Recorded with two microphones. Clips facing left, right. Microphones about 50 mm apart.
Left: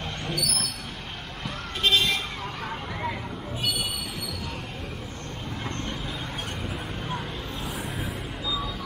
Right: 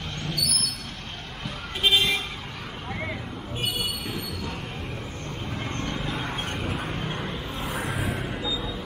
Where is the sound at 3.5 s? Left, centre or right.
Right.